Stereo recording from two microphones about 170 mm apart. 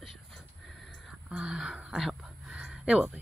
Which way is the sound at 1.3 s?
5° right (ahead or behind).